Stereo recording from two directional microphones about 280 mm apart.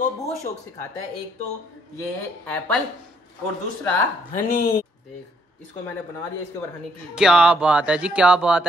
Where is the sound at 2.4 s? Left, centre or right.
Centre.